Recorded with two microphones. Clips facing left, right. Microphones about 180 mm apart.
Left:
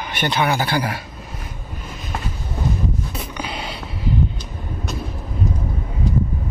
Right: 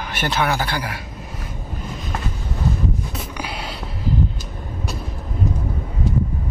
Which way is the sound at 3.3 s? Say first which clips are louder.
Left 2 dB; 5° right (ahead or behind).